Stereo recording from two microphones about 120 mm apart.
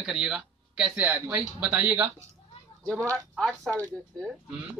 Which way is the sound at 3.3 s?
Centre (ahead or behind).